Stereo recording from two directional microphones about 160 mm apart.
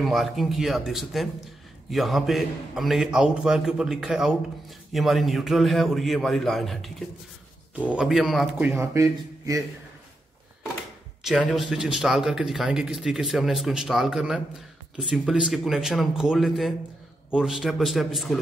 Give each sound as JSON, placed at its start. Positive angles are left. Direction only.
{"t": 0.0, "sound": "a man's voice", "side_deg": 0}
{"t": 8.5, "sound": "speech", "side_deg": -15}
{"t": 11.2, "sound": "a man's voice", "side_deg": 0}